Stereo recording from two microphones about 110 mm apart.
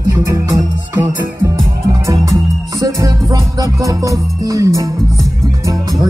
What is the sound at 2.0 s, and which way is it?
Music, 30° right (ahead or behind).